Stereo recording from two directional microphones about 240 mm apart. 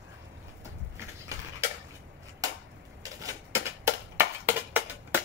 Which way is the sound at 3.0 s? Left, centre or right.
Centre.